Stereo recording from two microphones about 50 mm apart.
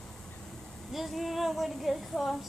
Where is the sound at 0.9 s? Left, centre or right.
Centre.